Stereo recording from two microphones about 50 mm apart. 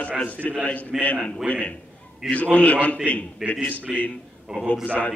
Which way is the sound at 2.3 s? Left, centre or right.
Left.